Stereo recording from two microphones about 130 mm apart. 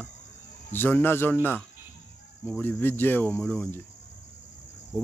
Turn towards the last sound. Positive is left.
turn(degrees=5)  # may be behind; listen again after turning